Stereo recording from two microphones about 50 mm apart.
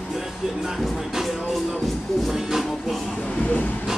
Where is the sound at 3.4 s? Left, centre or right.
Left.